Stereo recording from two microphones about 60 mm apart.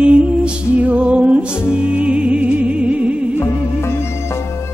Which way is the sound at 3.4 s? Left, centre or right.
Left.